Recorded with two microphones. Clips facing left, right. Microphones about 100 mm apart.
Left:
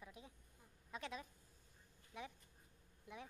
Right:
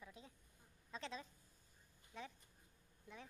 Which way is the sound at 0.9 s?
10° left (ahead or behind).